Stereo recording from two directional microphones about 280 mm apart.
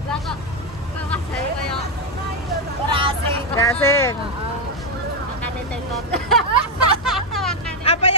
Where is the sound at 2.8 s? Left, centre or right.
Centre.